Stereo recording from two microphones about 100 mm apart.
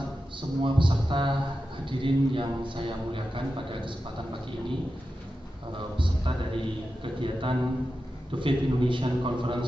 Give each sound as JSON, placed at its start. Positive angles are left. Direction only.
{"t": 0.4, "sound": "a man's voice", "side_deg": -55}
{"t": 5.8, "sound": "a man's voice", "side_deg": -55}